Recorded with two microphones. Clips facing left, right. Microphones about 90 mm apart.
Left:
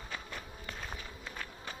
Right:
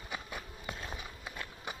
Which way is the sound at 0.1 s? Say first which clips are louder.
Right 2 dB; 15° right (ahead or behind).